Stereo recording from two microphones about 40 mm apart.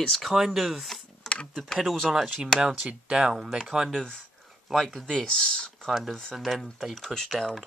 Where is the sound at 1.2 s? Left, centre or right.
Centre.